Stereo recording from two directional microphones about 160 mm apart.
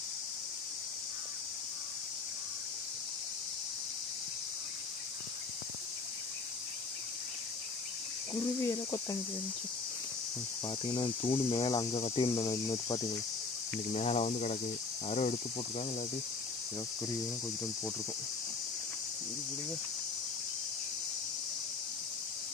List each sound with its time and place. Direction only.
8.4 s cricket: 20° left (ahead or behind)
10.9 s speech: 35° left (ahead or behind)
11.6 s cricket: 25° left (ahead or behind)
11.9 s speech: 35° left (ahead or behind)
12.3 s cricket: 20° left (ahead or behind)
13.9 s cricket: 45° left (ahead or behind)
15.0 s speech: 40° left (ahead or behind)